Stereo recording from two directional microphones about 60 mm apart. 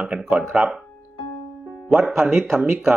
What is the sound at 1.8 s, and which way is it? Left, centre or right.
Speech, centre.